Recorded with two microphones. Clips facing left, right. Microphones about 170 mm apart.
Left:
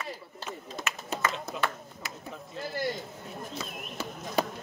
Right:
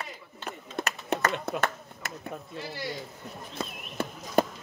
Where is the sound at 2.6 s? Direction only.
50° left (ahead or behind).